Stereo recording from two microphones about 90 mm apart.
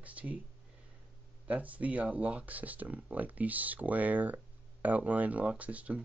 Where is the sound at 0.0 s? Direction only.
15° right (ahead or behind).